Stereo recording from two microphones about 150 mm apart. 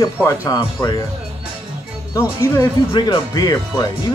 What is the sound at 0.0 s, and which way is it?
Speech, 20° left (ahead or behind).